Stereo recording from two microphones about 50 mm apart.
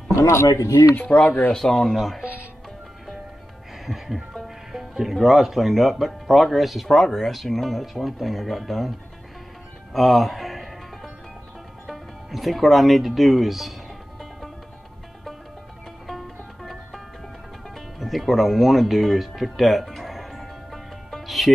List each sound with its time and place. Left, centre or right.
0.1 s speech: left
1.0 s speech: left
1.5 s speech: centre
3.8 s speech: centre
9.9 s music: centre
11.8 s speech: centre
16.1 s music: centre